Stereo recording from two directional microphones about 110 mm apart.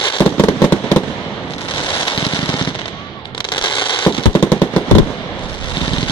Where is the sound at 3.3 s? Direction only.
45° left (ahead or behind).